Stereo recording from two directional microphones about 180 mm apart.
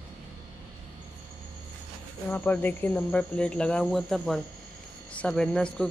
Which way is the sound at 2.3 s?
10° left (ahead or behind).